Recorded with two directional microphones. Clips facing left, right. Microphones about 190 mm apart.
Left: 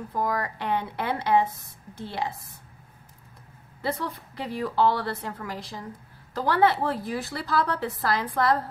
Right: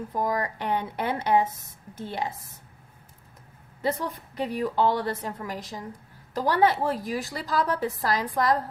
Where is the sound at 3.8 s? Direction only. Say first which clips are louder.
Right 2 dB; 20° right (ahead or behind).